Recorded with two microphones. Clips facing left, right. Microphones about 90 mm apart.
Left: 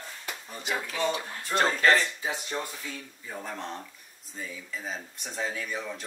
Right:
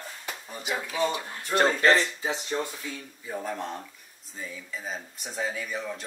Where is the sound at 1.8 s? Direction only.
25° right (ahead or behind).